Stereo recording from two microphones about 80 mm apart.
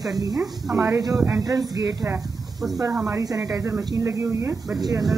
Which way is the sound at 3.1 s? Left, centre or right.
Right.